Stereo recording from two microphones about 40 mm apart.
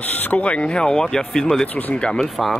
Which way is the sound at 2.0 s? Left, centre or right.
Left.